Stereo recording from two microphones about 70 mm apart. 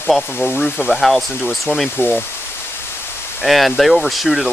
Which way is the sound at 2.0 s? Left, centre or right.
Left.